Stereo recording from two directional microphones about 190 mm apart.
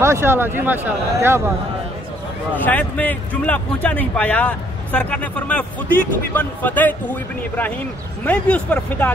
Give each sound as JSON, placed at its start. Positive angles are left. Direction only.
{"t": 0.0, "sound": "speech", "side_deg": -15}
{"t": 2.6, "sound": "speech", "side_deg": 10}